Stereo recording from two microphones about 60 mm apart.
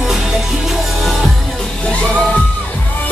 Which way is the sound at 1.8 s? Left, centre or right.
Centre.